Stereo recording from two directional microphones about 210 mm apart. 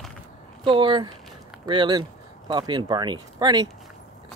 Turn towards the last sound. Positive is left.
turn(degrees=-20)  # may be behind; listen again after turning